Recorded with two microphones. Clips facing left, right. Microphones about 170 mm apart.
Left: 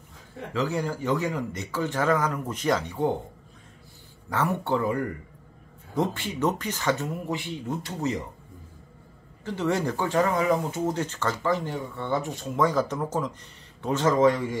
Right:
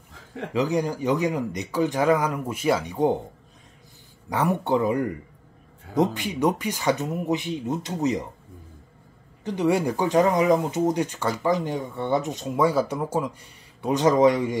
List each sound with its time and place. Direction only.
0.5 s speech: 15° right (ahead or behind)
4.3 s speech: 15° right (ahead or behind)
9.4 s speech: 15° right (ahead or behind)